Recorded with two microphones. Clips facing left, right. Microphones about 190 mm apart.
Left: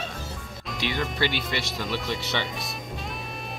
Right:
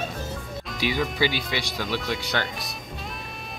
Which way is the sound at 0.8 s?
5° right (ahead or behind).